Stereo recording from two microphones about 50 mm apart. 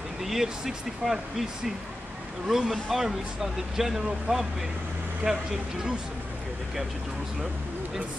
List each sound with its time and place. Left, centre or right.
0.2 s speech: centre
2.4 s speech: centre
5.2 s speech: right